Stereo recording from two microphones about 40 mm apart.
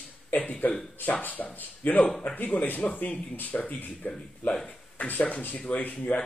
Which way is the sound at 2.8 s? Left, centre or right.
Left.